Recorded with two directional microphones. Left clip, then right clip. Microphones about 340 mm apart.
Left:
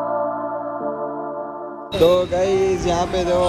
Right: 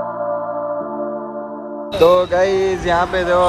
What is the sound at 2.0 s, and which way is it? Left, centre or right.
Speech, centre.